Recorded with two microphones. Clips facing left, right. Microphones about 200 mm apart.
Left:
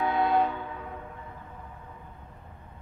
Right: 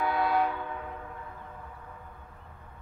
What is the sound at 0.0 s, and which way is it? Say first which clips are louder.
Train: left 2 dB; 20° left (ahead or behind).